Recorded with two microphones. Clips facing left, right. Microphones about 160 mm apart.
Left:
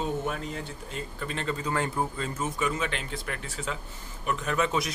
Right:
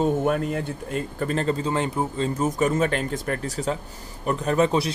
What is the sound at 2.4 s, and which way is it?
Speech, 40° right (ahead or behind).